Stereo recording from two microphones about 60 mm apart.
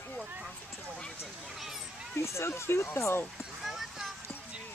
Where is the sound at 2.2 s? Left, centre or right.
Left.